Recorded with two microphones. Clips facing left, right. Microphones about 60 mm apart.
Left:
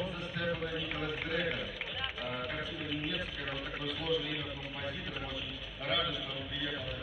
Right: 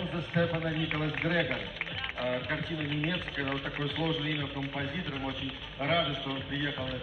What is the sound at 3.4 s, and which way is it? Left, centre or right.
A man's voice, right.